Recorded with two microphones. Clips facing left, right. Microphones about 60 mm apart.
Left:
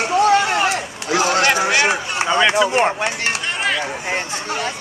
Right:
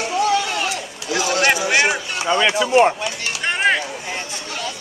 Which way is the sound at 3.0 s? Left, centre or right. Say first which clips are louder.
Left 4 dB; left.